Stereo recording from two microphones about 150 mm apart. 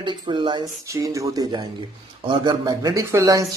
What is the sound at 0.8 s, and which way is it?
Speech, 20° right (ahead or behind).